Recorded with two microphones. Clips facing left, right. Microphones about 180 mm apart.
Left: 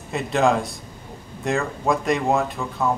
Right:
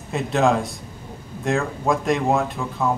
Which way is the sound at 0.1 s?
Centre (ahead or behind).